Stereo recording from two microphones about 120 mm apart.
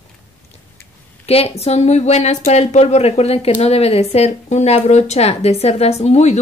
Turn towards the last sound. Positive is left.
turn(degrees=65)  # may be behind; listen again after turning